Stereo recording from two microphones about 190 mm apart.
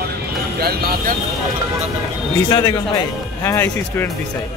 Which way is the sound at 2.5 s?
20° left (ahead or behind).